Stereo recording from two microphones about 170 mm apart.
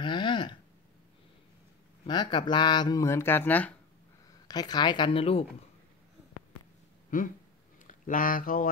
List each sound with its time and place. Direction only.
0.0 s a sound: 30° left (ahead or behind)
2.0 s speech: 25° left (ahead or behind); by 3.7 s 10° left (ahead or behind)
4.5 s speech: 25° left (ahead or behind)
7.1 s speech: 55° left (ahead or behind)